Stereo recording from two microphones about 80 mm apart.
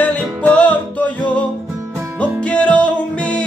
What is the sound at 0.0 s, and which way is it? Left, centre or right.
Music, centre.